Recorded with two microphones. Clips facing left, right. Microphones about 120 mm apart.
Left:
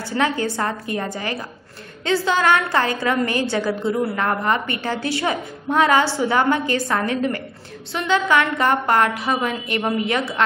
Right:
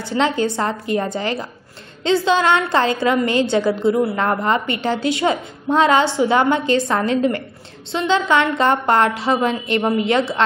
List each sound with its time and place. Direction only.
0.0 s a woman's voice: 20° right (ahead or behind)